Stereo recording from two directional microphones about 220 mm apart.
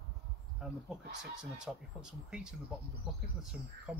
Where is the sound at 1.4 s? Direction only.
5° right (ahead or behind).